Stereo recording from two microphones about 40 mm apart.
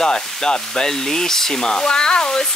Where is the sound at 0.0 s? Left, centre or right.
Centre.